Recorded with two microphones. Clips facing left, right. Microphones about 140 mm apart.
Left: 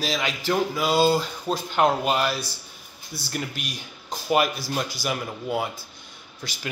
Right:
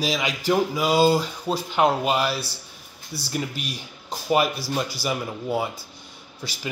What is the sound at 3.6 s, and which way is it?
Speech, 35° right (ahead or behind).